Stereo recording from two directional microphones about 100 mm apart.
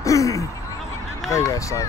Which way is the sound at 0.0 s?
30° left (ahead or behind).